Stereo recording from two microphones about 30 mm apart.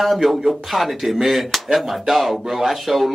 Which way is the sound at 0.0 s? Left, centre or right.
Centre.